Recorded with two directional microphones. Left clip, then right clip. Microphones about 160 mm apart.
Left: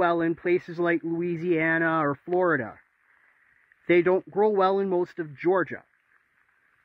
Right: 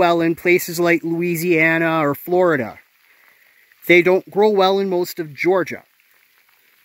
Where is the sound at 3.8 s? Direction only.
5° right (ahead or behind).